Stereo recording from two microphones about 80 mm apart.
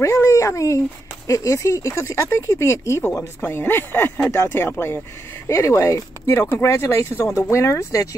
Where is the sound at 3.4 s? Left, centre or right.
Left.